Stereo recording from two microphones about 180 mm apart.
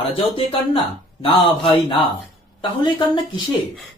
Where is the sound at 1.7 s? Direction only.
30° left (ahead or behind).